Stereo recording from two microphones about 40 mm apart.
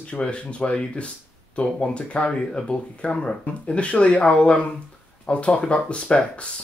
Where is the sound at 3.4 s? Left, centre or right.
Left.